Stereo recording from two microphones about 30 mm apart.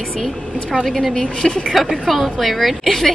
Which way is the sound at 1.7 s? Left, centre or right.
Centre.